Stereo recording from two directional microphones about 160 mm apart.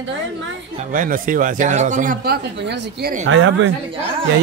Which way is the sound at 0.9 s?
60° right (ahead or behind).